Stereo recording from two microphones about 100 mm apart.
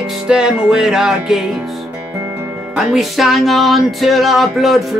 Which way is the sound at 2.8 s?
Centre (ahead or behind).